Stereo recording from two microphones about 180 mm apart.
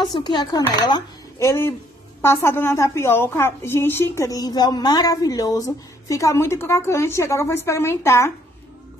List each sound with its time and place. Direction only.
0.0 s a woman's voice: 25° left (ahead or behind)